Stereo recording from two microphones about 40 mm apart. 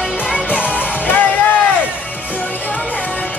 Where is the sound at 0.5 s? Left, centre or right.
Left.